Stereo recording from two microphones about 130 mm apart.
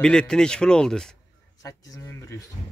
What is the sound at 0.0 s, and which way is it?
Speech, 5° left (ahead or behind).